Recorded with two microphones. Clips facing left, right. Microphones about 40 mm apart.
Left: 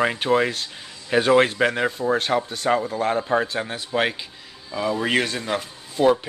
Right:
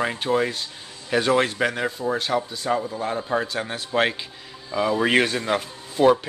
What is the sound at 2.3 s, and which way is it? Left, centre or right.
Speech, centre.